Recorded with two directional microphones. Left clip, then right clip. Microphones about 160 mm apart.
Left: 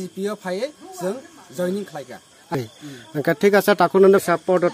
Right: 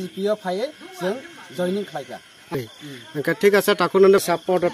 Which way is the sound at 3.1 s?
65° left (ahead or behind).